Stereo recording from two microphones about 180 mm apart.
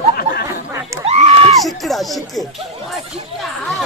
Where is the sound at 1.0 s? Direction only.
35° right (ahead or behind).